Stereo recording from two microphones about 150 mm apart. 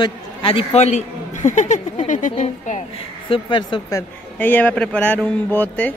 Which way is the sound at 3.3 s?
30° left (ahead or behind).